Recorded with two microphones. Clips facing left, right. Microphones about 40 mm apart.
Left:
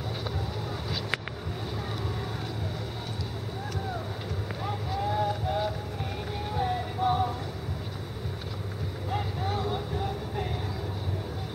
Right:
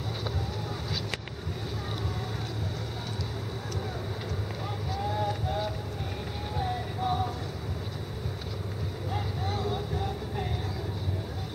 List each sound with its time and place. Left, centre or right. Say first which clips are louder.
4.6 s vehicle: left 3 dB; centre
9.1 s vehicle: left 3 dB; centre